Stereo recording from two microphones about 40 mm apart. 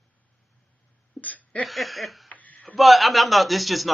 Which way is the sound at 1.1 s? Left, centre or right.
Centre.